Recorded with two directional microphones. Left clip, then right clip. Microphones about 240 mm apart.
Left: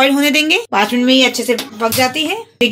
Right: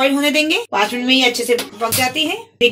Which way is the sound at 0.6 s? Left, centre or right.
Left.